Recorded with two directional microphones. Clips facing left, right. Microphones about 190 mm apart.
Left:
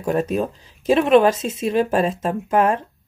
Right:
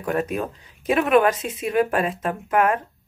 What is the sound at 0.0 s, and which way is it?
Speech, 30° left (ahead or behind).